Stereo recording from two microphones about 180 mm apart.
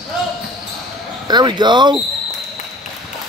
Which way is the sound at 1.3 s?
25° right (ahead or behind).